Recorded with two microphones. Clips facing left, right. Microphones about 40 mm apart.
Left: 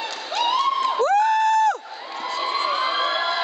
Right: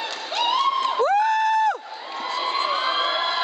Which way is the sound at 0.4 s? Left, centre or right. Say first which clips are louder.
Even; centre.